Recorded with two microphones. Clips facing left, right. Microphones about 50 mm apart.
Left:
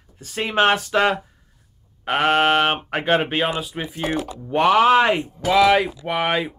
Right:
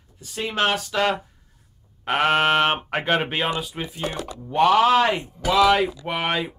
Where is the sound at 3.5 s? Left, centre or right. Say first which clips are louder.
Left 2 dB; left.